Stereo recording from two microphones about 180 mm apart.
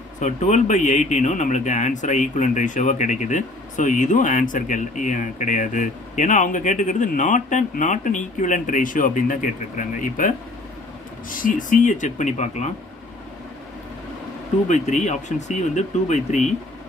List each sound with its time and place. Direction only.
0.2 s speech: 40° left (ahead or behind)
14.7 s speech: 40° left (ahead or behind)